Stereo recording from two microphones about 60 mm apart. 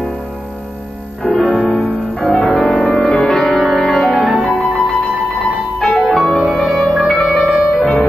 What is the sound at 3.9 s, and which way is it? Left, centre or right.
Music, left.